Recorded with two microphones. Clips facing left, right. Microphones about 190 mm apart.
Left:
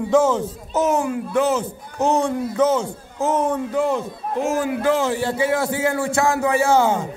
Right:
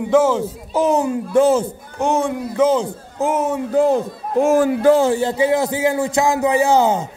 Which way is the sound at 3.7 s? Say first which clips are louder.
Right 5 dB; 35° right (ahead or behind).